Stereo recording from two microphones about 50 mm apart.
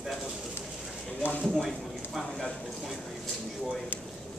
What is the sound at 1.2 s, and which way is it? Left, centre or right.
Speech, left.